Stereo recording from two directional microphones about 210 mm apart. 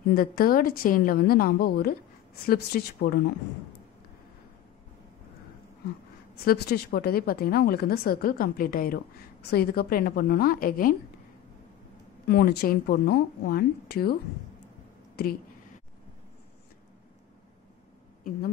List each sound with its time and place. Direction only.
0.1 s a woman's voice: 45° left (ahead or behind)
6.4 s a woman's voice: 50° left (ahead or behind)
12.3 s a woman's voice: 50° left (ahead or behind)
15.2 s a woman's voice: 50° left (ahead or behind)